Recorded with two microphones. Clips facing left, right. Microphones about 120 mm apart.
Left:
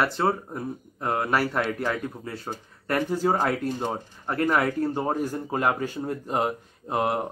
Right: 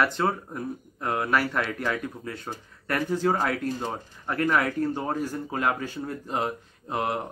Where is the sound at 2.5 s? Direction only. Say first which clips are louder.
Left 3 dB; 25° left (ahead or behind).